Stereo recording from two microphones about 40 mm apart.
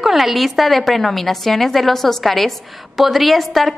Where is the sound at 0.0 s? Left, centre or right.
Centre.